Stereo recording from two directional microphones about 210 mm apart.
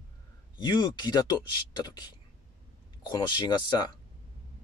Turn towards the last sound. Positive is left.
turn(degrees=20)  # may be behind; listen again after turning